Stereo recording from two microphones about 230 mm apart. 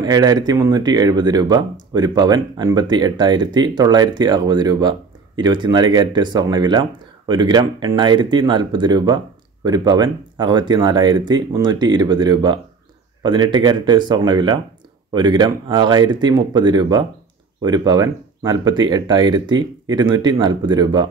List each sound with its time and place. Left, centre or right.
0.0 s speech: centre